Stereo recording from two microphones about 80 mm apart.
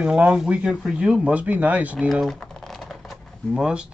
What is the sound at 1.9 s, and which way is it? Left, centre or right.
Typing, centre.